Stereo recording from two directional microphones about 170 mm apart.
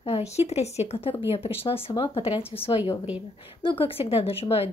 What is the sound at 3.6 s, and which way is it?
Speech, 30° left (ahead or behind).